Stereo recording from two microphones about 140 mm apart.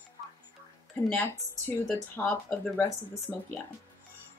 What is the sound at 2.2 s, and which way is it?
Speech, 10° left (ahead or behind).